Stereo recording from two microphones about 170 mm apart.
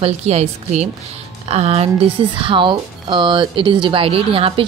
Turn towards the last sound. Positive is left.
turn(degrees=-35)  # may be behind; listen again after turning